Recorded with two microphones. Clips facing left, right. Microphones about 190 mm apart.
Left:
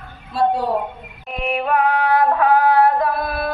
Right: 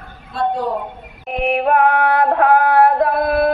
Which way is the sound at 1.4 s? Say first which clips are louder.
Right 4 dB; 60° right (ahead or behind).